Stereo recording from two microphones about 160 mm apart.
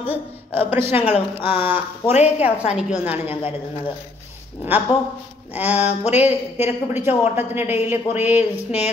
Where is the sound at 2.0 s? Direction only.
45° left (ahead or behind).